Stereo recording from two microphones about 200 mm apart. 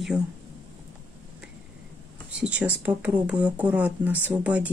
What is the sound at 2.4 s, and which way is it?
Speech, 5° right (ahead or behind).